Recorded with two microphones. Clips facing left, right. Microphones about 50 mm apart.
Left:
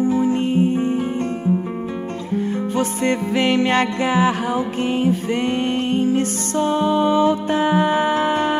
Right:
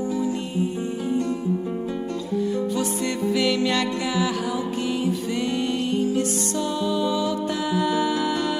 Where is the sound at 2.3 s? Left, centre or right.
Left.